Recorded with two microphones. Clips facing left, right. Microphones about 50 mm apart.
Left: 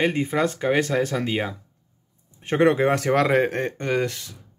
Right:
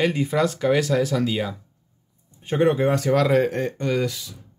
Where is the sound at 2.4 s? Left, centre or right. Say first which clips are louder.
Left 1 dB; left.